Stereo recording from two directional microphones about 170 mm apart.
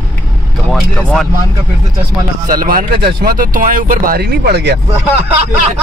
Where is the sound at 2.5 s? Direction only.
55° right (ahead or behind); by 4.8 s 70° right (ahead or behind).